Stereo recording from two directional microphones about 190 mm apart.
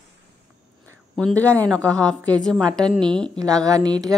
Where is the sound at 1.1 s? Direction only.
5° left (ahead or behind).